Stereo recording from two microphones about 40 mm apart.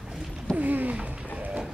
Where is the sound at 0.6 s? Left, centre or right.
Right.